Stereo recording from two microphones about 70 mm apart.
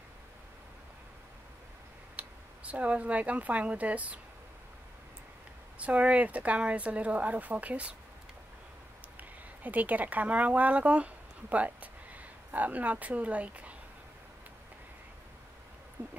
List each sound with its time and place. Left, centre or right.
2.1 s speech: centre
5.8 s speech: centre
9.1 s speech: right
16.0 s a sound: right